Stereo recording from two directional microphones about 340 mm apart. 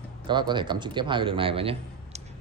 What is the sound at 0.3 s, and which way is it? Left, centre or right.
A man's voice, centre.